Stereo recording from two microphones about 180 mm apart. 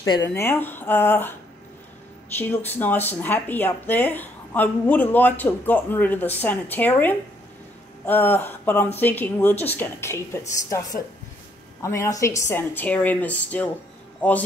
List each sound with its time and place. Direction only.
0.2 s speech: 15° left (ahead or behind)
2.3 s a woman's voice: 10° left (ahead or behind)